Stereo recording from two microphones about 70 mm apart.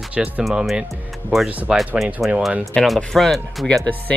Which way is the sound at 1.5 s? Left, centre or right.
Right.